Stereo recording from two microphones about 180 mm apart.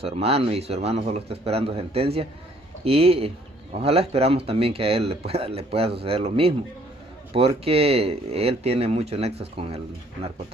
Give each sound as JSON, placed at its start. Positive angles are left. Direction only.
{"t": 0.0, "sound": "speech", "side_deg": -35}